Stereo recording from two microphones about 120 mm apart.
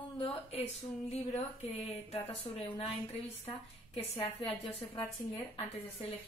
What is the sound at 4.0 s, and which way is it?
A woman's voice, 55° left (ahead or behind).